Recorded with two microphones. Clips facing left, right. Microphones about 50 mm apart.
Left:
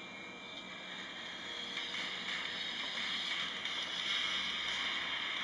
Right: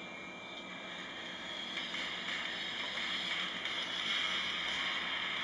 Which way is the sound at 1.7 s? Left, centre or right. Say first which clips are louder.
Right 1 dB; right.